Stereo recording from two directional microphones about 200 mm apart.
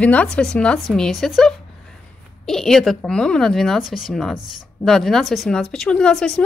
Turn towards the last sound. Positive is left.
turn(degrees=5)  # may be behind; listen again after turning